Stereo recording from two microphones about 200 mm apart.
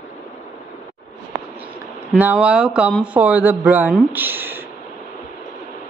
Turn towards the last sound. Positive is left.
turn(degrees=-10)  # may be behind; listen again after turning